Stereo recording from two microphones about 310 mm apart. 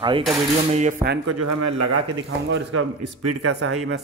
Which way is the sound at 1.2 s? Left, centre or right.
Right.